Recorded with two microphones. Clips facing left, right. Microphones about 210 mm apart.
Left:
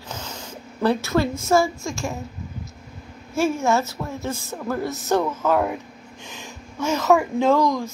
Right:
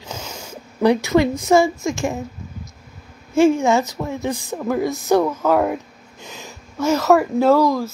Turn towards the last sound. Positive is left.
turn(degrees=-5)  # may be behind; listen again after turning